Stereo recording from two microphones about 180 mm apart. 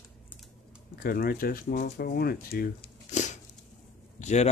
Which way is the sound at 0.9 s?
55° left (ahead or behind).